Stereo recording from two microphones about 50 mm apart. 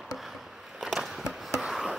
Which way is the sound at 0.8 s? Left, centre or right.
Centre.